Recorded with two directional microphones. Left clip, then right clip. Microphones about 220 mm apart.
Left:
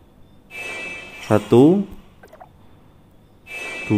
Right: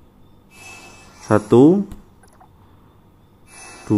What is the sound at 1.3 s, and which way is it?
Mantra, centre (ahead or behind).